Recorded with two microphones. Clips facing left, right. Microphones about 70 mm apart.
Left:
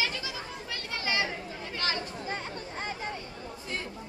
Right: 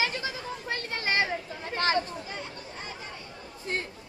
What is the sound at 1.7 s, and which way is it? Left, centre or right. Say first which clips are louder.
Chatter: right 7 dB; right.